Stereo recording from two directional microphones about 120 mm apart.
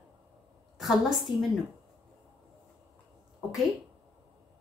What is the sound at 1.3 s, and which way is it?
Speech, 40° left (ahead or behind).